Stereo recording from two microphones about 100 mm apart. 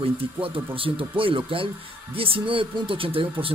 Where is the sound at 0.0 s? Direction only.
65° right (ahead or behind).